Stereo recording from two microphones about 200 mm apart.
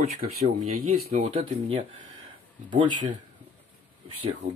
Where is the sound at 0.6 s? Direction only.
45° right (ahead or behind).